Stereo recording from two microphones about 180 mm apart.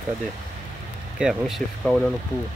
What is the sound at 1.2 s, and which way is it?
Speech, centre (ahead or behind).